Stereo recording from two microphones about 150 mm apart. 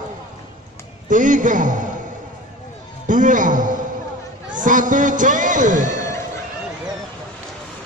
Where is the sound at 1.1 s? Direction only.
60° right (ahead or behind).